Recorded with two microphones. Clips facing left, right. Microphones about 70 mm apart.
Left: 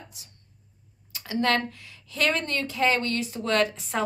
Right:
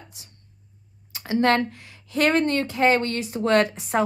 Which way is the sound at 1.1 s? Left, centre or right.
Right.